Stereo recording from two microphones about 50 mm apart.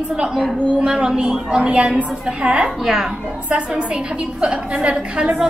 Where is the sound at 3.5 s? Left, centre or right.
Right.